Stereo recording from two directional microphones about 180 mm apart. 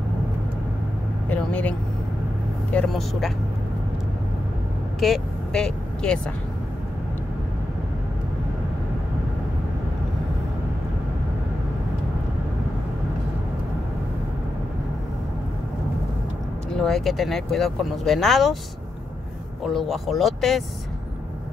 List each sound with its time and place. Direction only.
1.3 s speech: 5° left (ahead or behind)
5.0 s speech: centre (ahead or behind)
16.7 s speech: centre (ahead or behind)
19.6 s speech: centre (ahead or behind)